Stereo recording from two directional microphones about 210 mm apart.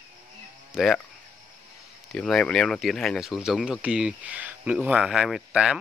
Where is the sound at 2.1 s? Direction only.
5° left (ahead or behind).